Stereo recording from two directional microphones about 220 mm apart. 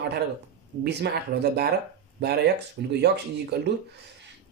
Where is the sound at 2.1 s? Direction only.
50° right (ahead or behind).